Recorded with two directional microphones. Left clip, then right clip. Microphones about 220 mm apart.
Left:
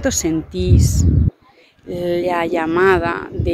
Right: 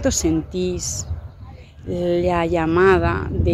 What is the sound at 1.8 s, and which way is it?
Speech, 10° left (ahead or behind).